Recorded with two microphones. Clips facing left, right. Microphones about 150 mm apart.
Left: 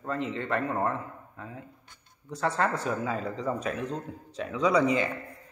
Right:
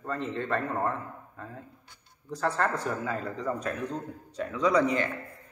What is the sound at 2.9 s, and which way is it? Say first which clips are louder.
Speech: left 1 dB; 10° left (ahead or behind).